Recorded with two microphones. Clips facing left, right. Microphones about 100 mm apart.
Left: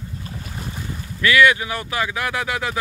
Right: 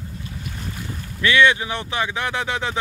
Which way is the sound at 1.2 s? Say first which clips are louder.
Left 1 dB; 25° right (ahead or behind).